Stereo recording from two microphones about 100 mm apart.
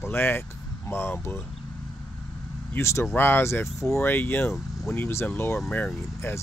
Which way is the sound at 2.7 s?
30° left (ahead or behind).